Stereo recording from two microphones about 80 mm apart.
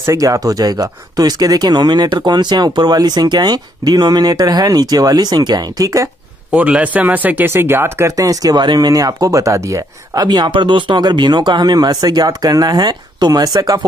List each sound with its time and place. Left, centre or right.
0.0 s speech: right
6.5 s speech: centre
8.2 s speech: right
10.2 s speech: right